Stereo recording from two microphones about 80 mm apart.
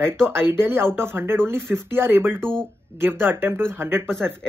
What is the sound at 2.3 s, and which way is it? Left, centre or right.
Speech, centre.